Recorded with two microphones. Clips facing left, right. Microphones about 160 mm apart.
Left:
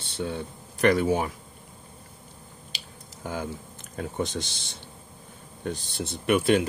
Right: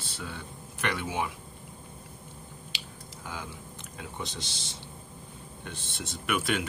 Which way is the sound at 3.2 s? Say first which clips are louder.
Left 8 dB; 45° left (ahead or behind).